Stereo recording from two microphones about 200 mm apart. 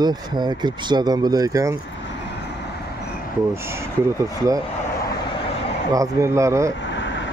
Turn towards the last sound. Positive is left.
turn(degrees=65)  # may be behind; listen again after turning